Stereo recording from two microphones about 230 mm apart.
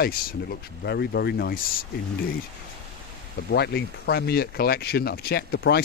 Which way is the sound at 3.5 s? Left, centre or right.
Left.